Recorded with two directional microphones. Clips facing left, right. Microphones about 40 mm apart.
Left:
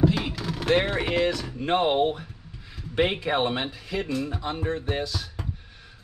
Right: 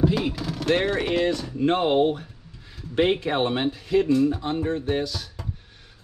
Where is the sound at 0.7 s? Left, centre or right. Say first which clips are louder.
Right 1 dB; left.